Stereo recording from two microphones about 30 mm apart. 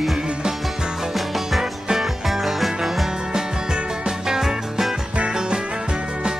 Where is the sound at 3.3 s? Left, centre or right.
Right.